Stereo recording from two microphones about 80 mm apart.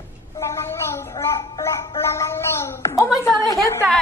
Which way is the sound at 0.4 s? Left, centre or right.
Left.